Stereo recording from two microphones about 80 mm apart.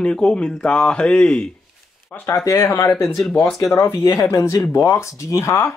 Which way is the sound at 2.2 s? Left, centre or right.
Left.